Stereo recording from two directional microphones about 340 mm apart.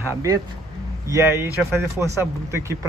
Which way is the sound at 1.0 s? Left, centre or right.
Centre.